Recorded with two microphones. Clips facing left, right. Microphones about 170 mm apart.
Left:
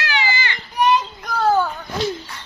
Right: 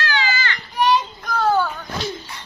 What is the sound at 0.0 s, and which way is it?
Children playing, 15° left (ahead or behind).